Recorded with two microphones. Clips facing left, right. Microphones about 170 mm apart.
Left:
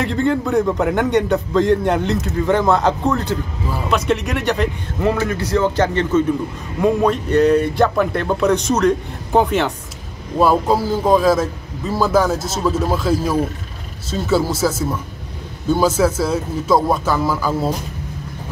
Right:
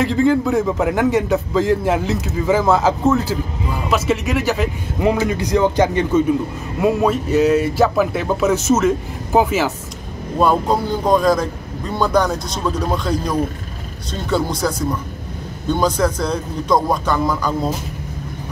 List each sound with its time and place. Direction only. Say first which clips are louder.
0.0 s a man's voice: right 3 dB; centre (ahead or behind)
5.0 s a man's voice: right 1 dB; 15° right (ahead or behind); by 17.7 s 5° left (ahead or behind)